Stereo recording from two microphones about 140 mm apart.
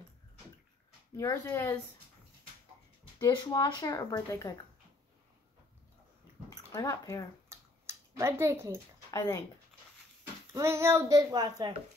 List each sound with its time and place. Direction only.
1.1 s speech: 20° left (ahead or behind)
3.2 s speech: 30° left (ahead or behind)
6.5 s speech: 25° left (ahead or behind)
7.4 s a sound: 20° right (ahead or behind)
9.1 s speech: 25° left (ahead or behind)
10.5 s a child's voice: 20° right (ahead or behind)